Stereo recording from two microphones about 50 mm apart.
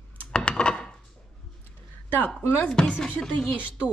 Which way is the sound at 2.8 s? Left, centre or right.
Centre.